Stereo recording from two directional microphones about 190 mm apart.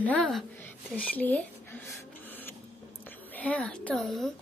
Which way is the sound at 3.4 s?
5° left (ahead or behind).